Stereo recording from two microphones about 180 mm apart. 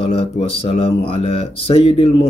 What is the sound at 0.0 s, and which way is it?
Speech, 30° left (ahead or behind).